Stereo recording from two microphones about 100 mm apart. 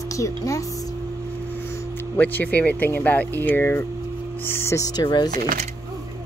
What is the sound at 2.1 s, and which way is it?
Speech, 20° left (ahead or behind).